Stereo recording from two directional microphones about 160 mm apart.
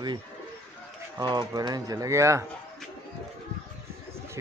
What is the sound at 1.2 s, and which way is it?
Speech, 25° right (ahead or behind).